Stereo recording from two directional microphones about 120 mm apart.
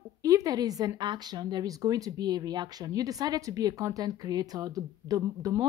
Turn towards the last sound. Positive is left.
turn(degrees=-30)  # may be behind; listen again after turning